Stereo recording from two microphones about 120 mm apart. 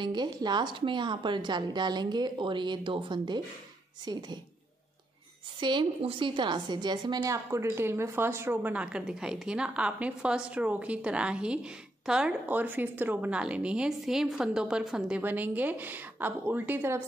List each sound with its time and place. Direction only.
0.0 s a woman's voice: 40° right (ahead or behind)
5.6 s a woman's voice: 40° right (ahead or behind)
7.5 s a woman's voice: 20° right (ahead or behind)